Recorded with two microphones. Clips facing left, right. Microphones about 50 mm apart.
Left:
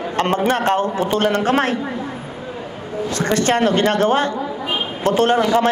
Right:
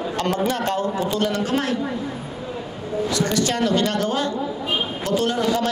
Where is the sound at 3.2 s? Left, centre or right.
Left.